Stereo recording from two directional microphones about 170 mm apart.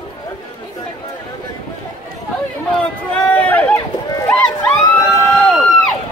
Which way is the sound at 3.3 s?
10° left (ahead or behind).